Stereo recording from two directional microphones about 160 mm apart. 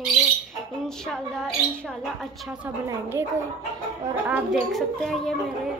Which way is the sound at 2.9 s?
15° right (ahead or behind).